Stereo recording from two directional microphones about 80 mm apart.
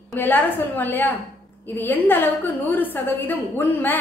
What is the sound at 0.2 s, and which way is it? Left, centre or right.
A woman's voice, left.